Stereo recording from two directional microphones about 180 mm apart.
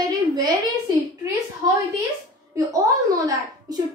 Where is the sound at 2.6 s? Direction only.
20° right (ahead or behind).